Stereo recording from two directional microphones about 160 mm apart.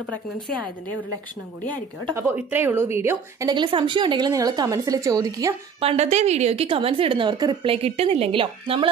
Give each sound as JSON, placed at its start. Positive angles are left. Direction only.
{"t": 2.3, "sound": "a woman's voice", "side_deg": -15}
{"t": 5.8, "sound": "a woman's voice", "side_deg": -40}